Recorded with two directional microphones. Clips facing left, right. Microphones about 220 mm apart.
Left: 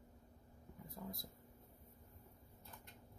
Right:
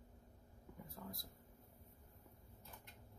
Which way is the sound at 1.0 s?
15° left (ahead or behind).